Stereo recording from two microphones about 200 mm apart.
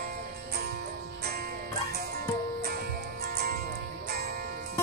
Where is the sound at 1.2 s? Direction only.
50° right (ahead or behind).